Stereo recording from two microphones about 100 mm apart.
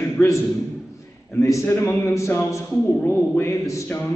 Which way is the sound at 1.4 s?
25° left (ahead or behind).